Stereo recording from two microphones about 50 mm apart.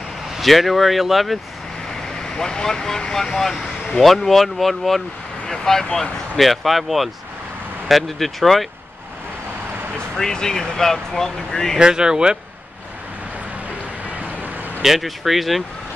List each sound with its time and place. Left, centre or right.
0.3 s speech: centre
1.9 s speech: centre
10.1 s speech: centre
11.8 s speech: centre
14.0 s vehicle: right
14.8 s speech: centre